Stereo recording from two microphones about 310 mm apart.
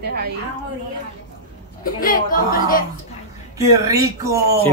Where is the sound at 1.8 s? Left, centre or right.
Left.